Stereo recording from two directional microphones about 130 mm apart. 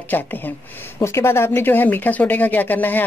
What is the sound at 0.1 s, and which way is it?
Speech, 15° left (ahead or behind).